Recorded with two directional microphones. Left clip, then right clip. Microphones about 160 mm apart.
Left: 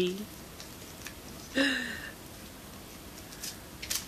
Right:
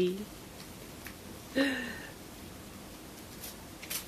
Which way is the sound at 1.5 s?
15° left (ahead or behind).